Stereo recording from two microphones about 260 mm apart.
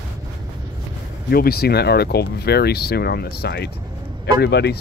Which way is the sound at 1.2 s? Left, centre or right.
Left.